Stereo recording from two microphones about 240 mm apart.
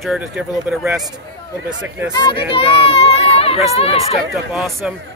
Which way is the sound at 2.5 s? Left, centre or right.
Left.